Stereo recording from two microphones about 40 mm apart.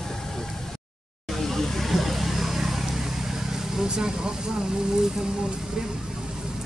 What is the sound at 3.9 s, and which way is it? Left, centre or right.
Speech, centre.